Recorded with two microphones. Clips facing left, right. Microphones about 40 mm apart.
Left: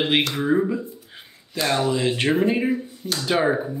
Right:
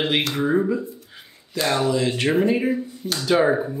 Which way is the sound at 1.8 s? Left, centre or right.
Left.